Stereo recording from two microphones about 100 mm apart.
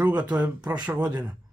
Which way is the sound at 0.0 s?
15° right (ahead or behind).